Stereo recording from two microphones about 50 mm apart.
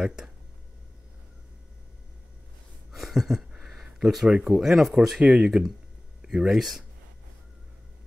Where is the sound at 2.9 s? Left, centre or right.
Centre.